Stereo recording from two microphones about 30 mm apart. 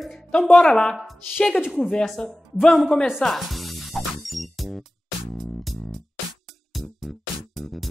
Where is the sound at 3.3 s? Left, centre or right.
Centre.